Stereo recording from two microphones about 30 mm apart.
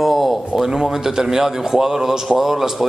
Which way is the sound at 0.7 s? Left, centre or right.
Centre.